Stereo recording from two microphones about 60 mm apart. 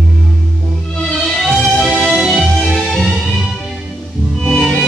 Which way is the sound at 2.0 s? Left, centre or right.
Centre.